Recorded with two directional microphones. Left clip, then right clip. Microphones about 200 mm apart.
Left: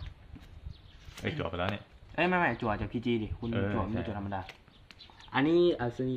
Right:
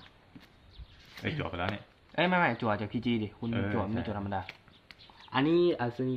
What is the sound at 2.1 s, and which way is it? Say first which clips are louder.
Speech: right 1 dB; 30° right (ahead or behind).